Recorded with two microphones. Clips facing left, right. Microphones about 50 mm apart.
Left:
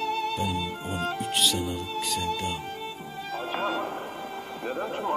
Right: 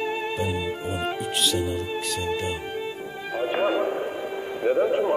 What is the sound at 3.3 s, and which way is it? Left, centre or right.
Music, right.